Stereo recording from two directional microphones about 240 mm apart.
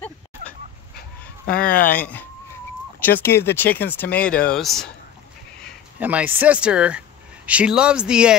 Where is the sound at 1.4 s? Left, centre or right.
Left.